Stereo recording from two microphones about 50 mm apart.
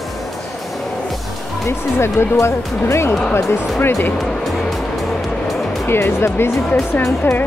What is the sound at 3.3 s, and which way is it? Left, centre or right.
Speech, left.